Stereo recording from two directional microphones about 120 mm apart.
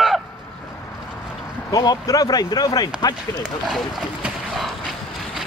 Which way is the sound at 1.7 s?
30° left (ahead or behind).